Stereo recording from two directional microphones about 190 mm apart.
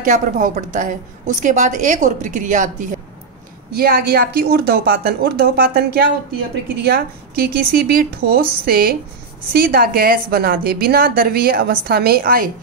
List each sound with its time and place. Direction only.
0.0 s a woman's voice: 40° right (ahead or behind)
3.7 s a woman's voice: 55° right (ahead or behind)